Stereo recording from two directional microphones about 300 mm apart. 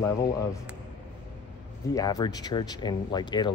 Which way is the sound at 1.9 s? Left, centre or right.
Centre.